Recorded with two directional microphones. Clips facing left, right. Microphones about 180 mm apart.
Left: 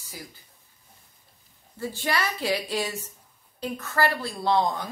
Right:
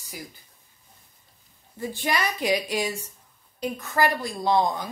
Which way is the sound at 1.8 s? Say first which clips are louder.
Right 1 dB; 15° right (ahead or behind).